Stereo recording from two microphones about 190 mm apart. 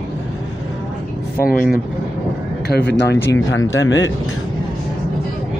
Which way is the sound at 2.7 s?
60° left (ahead or behind).